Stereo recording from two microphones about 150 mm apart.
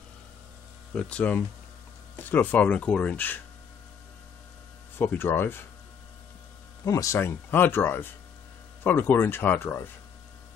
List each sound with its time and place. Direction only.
0.9 s speech: 10° left (ahead or behind)
4.9 s speech: 15° left (ahead or behind)
6.8 s speech: 25° left (ahead or behind)